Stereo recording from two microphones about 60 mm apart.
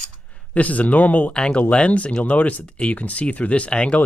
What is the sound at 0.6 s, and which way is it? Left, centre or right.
Speech, left.